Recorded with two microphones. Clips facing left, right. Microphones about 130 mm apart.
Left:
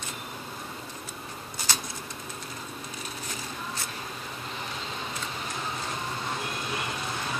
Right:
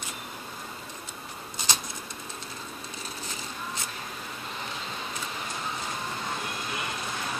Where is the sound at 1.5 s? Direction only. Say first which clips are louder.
Right 1 dB; 20° right (ahead or behind).